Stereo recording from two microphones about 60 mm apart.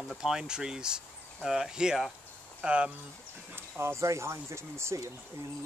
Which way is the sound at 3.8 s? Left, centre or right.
Right.